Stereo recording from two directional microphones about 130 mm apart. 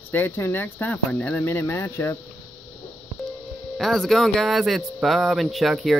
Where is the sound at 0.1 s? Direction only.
15° left (ahead or behind).